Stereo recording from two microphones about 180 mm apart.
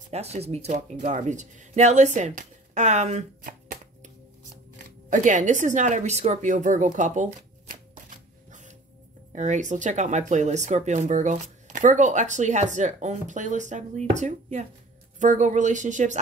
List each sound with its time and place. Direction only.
0.1 s speech: 35° right (ahead or behind)
5.1 s a woman's voice: 45° right (ahead or behind)